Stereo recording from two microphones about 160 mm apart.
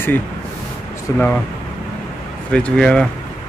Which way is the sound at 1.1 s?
10° left (ahead or behind).